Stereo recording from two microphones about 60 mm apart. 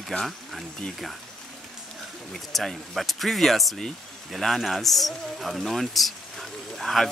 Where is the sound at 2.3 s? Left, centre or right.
Centre.